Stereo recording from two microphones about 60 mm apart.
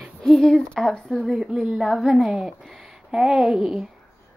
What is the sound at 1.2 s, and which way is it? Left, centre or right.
A woman's voice, centre.